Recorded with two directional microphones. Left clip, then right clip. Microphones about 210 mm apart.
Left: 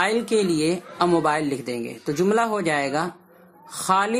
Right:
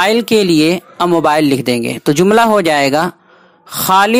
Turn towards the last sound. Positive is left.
turn(degrees=-40)  # may be behind; listen again after turning